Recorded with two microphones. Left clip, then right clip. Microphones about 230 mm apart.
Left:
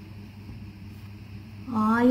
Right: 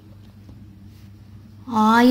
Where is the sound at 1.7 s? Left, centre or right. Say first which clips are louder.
Right 8 dB; right.